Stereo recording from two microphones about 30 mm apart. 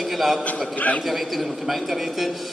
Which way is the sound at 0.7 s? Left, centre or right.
Left.